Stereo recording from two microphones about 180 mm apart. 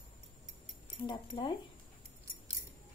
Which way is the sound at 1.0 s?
25° left (ahead or behind).